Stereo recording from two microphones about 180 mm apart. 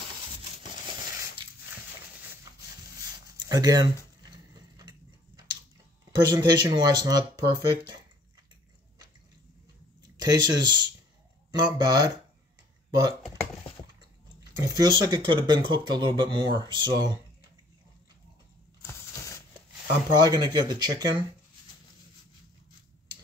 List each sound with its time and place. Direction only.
3.3 s a sound: 20° right (ahead or behind)
6.1 s speech: 25° right (ahead or behind)
10.1 s speech: 20° right (ahead or behind)
14.4 s speech: 20° right (ahead or behind)
18.9 s a sound: 15° left (ahead or behind)
20.2 s speech: 20° right (ahead or behind)